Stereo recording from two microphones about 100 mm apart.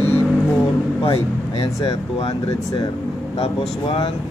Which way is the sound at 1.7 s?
35° left (ahead or behind).